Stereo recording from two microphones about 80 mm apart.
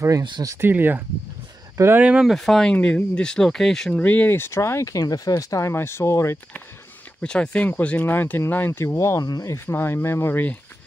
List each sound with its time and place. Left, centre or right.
0.6 s speech: right
2.0 s speech: centre
2.2 s speech: centre
2.7 s speech: centre
4.0 s speech: left
7.2 s speech: centre; by 9.2 s left
9.2 s speech: left
9.5 s speech: left